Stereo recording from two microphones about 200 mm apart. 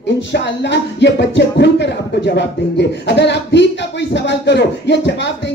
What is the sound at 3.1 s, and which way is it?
Speech, 60° left (ahead or behind).